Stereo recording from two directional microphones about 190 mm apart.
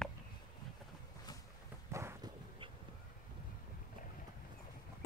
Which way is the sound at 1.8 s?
15° right (ahead or behind).